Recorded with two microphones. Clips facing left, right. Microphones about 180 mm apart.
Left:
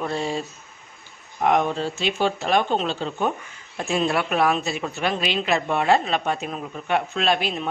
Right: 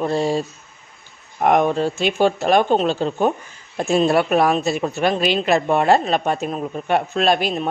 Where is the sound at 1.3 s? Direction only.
50° right (ahead or behind).